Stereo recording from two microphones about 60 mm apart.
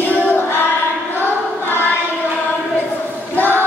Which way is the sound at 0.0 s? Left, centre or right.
Left.